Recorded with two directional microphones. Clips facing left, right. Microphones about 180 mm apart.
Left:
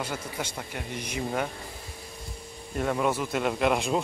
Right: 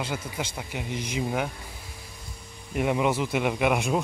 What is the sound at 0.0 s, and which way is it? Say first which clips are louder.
Speech: right 1 dB; 10° right (ahead or behind).